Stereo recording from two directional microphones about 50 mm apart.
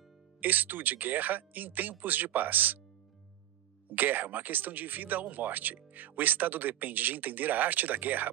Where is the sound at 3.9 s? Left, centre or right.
Right.